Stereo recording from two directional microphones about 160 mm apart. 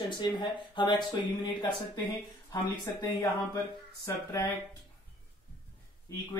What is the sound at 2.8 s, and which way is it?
Speech, 25° left (ahead or behind).